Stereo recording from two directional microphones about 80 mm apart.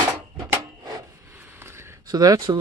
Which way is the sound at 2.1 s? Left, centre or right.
Right.